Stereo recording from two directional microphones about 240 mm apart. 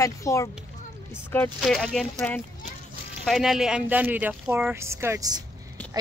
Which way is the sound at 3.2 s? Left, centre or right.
Centre.